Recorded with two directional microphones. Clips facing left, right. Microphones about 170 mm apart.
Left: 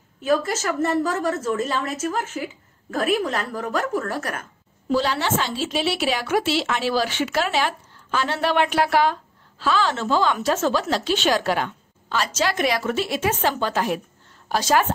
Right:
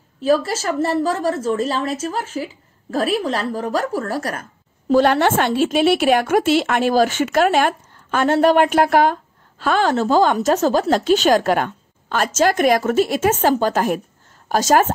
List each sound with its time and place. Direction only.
0.2 s a woman's voice: 30° right (ahead or behind)
4.9 s a woman's voice: 55° right (ahead or behind)